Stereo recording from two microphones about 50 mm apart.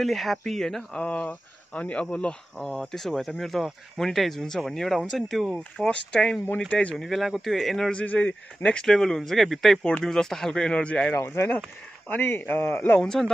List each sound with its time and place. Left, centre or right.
0.0 s speech: centre
0.9 s speech: left; by 5.5 s centre
5.8 s speech: centre
7.0 s speech: centre
7.9 s speech: left
8.8 s speech: centre
12.1 s speech: left
13.0 s speech: centre